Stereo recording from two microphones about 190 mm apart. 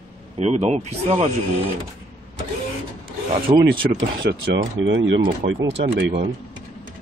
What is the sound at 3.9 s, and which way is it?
Speech, 60° right (ahead or behind).